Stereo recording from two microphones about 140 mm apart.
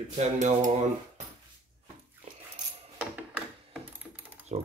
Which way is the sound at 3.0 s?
10° right (ahead or behind).